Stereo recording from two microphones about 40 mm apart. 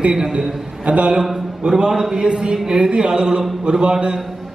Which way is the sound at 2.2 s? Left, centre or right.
Right.